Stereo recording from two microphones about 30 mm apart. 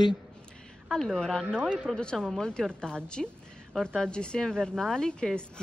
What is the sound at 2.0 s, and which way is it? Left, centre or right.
A woman's voice, left.